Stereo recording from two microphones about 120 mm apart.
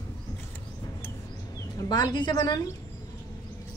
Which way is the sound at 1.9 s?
40° left (ahead or behind).